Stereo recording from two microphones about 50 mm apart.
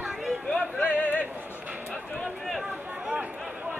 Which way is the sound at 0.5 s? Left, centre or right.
Left.